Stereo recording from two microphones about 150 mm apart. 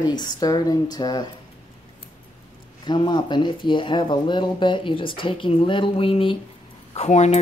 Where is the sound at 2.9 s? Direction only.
30° left (ahead or behind).